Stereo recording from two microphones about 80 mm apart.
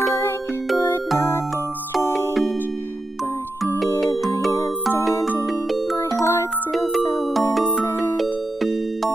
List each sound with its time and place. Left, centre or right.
2.0 s music: left
5.5 s music: centre
6.1 s music: left
7.8 s music: left
8.2 s music: centre